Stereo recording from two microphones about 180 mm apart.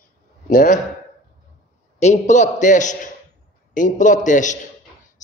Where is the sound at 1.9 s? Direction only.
40° left (ahead or behind).